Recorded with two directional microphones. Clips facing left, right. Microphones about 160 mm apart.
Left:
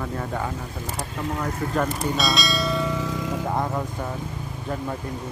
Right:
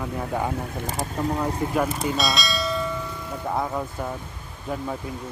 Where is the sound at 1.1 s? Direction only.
35° right (ahead or behind).